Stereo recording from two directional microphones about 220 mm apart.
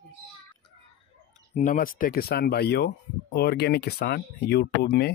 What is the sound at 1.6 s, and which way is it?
Speech, 40° left (ahead or behind).